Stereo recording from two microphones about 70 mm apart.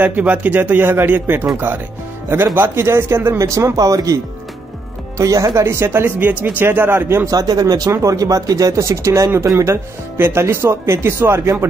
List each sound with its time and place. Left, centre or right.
0.0 s speech: right
3.4 s speech: right
7.2 s speech: right
7.9 s speech: right